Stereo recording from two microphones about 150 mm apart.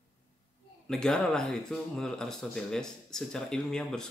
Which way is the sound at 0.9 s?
5° left (ahead or behind).